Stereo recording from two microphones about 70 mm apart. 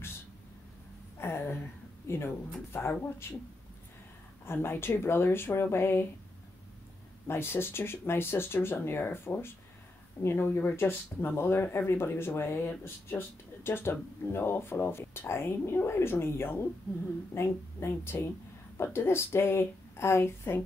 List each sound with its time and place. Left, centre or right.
1.2 s speech: left
4.5 s speech: left
7.2 s speech: left